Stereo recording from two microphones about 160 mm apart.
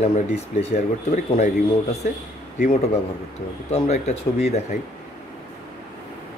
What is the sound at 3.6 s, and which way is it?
Speech, 45° left (ahead or behind).